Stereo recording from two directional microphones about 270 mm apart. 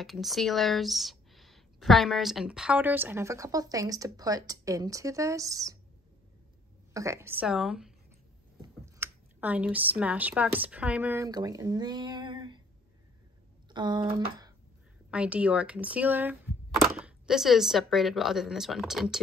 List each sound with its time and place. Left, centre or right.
0.0 s speech: centre
6.9 s a woman's voice: centre
13.7 s speech: centre
15.0 s speech: centre